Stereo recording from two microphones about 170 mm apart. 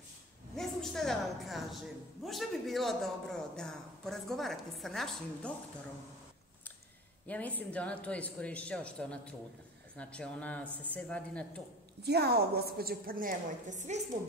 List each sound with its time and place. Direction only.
0.6 s a woman's voice: centre (ahead or behind)
7.2 s speech: 10° left (ahead or behind)
10.7 s speech: 10° right (ahead or behind)
11.0 s speech: 5° left (ahead or behind)
12.0 s a woman's voice: 75° right (ahead or behind); by 13.9 s 45° right (ahead or behind)